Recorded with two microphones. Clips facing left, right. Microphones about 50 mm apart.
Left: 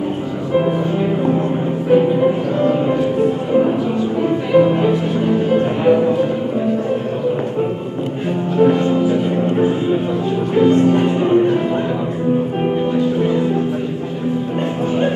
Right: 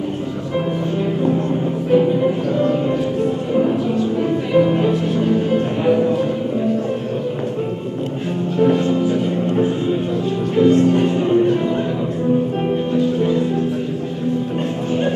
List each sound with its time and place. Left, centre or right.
1.9 s music: centre
10.5 s music: centre
13.0 s music: centre